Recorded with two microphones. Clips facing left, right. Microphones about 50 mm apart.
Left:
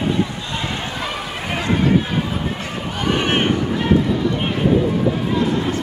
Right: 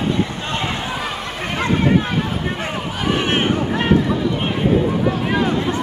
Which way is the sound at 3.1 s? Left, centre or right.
Centre.